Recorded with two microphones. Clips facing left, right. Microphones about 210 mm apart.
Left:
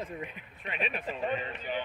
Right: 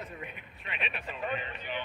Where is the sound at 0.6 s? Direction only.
40° left (ahead or behind).